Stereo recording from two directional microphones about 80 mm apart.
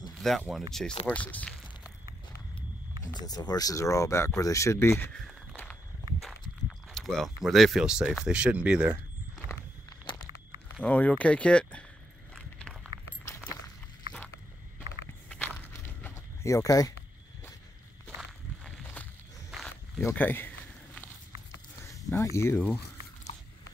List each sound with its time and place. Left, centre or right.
0.5 s speech: centre
1.0 s speech: centre
3.1 s speech: left
6.9 s a sound: centre
7.4 s speech: centre
10.1 s a sound: left
10.8 s speech: left
12.4 s walk: centre
15.2 s walk: left
16.4 s speech: left
20.2 s speech: left
21.8 s speech: left